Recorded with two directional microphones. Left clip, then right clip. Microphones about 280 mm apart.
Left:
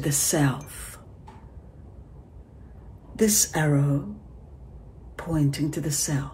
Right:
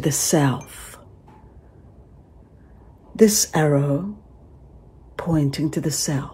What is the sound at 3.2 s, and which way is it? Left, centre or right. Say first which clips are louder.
Speech: right 6 dB; right.